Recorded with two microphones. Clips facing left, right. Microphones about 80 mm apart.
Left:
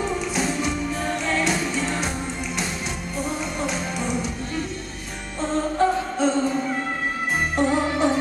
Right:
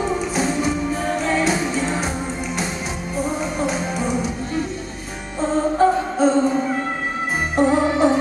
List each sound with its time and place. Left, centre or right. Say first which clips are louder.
0.0 s music: right 3 dB; centre
3.2 s music: right 5 dB; centre